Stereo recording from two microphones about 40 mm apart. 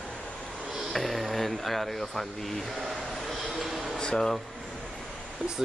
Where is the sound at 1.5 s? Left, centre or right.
Centre.